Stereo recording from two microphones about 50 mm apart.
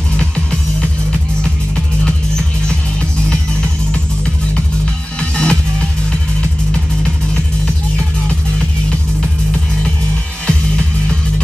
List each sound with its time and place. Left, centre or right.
0.2 s music: centre
5.3 s music: centre
10.4 s music: centre